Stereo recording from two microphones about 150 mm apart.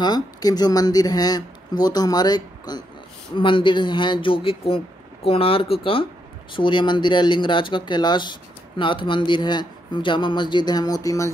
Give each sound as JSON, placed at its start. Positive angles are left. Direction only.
{"t": 0.0, "sound": "speech", "side_deg": 25}